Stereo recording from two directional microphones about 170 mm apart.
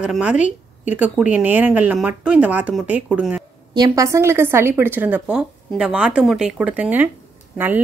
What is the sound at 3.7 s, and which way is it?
Speech, 20° right (ahead or behind).